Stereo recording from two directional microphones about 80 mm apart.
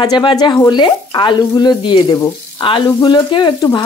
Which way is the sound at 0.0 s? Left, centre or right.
Left.